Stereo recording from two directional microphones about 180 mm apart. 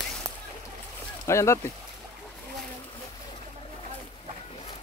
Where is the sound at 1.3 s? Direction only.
15° left (ahead or behind).